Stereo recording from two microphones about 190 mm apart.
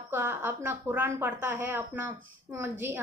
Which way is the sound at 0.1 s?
10° right (ahead or behind).